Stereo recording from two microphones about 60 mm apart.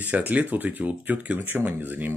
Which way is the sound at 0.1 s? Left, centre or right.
Right.